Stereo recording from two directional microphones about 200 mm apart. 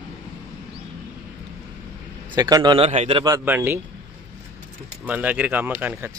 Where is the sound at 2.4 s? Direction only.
20° right (ahead or behind).